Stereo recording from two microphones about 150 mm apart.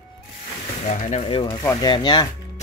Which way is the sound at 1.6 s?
25° left (ahead or behind).